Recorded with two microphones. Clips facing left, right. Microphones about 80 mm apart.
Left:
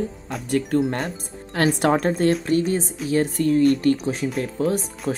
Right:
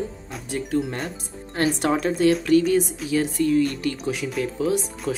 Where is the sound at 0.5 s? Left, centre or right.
Left.